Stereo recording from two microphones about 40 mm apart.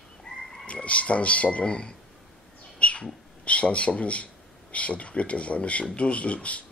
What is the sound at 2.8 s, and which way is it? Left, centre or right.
Bird, left.